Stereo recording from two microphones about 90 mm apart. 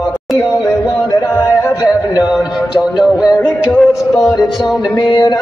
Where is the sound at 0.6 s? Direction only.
40° left (ahead or behind).